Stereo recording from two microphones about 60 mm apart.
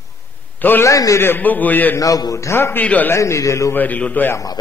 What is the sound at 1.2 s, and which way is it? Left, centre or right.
Speech, left.